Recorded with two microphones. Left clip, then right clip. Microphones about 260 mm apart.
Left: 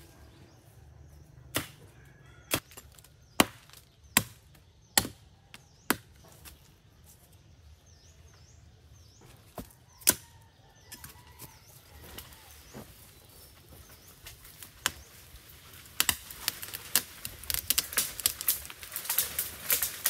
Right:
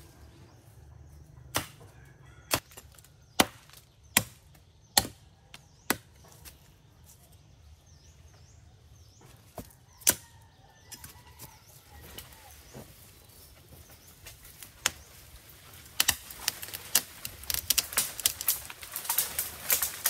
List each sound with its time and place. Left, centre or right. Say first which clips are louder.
3.3 s chop: even; centre
9.6 s chop: even; centre
10.9 s bird: even; centre
12.8 s vehicle: left 1 dB; centre
14.6 s a sound: right 1 dB; centre
16.0 s computer keyboard: right 2 dB; centre
19.1 s a sound: even; centre